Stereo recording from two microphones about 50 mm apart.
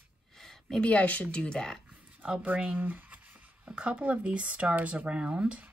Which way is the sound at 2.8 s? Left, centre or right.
Right.